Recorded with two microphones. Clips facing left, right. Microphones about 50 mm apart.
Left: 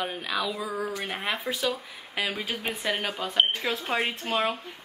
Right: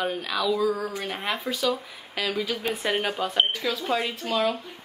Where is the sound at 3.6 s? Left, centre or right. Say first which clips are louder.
Right 1 dB; left.